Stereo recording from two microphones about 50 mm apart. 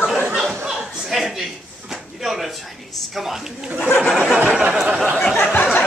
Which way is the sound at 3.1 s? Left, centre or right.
Centre.